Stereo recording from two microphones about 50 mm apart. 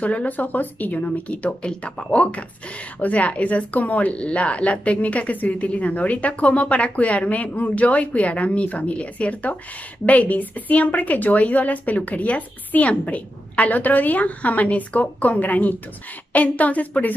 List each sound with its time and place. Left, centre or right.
0.0 s a woman's voice: left
1.7 s a woman's voice: centre